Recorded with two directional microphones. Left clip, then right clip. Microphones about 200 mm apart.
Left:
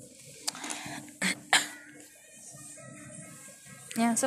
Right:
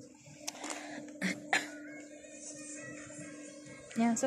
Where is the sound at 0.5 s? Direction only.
5° right (ahead or behind).